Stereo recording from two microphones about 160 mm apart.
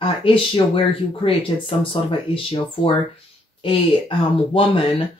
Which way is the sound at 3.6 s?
35° left (ahead or behind).